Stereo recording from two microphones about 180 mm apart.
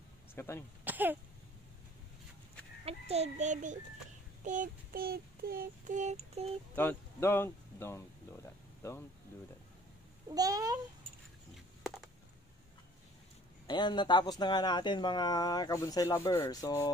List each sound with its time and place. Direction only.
0.3 s speech: 15° left (ahead or behind)
0.8 s a sound: 10° right (ahead or behind)
2.8 s a child's voice: 35° right (ahead or behind)
4.5 s child singing: 50° right (ahead or behind)
6.7 s speech: 10° left (ahead or behind)
10.3 s a child's voice: 20° right (ahead or behind)
13.7 s speech: 25° left (ahead or behind)